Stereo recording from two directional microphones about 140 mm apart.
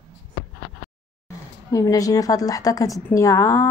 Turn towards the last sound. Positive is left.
turn(degrees=20)  # may be behind; listen again after turning